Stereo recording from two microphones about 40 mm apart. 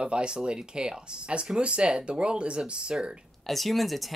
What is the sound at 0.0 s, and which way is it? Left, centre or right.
Speech, right.